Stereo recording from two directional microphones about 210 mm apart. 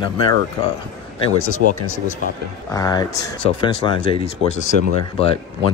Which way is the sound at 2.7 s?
15° left (ahead or behind).